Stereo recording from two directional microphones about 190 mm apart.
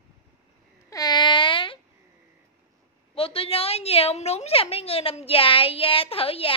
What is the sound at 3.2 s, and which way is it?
A woman's voice, 30° left (ahead or behind).